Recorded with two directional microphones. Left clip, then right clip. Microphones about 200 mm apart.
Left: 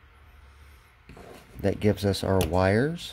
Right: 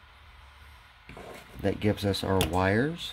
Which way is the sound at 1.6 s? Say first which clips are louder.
Left 3 dB; 20° left (ahead or behind).